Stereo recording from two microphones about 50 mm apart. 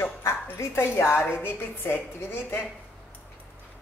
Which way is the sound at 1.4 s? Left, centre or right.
Left.